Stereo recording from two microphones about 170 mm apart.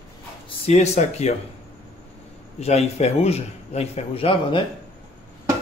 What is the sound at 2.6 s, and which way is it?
Speech, 40° left (ahead or behind).